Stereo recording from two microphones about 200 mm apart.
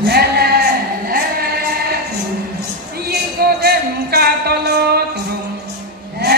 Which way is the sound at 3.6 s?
50° right (ahead or behind).